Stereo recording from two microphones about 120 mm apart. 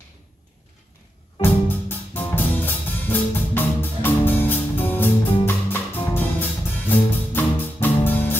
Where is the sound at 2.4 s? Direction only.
15° left (ahead or behind).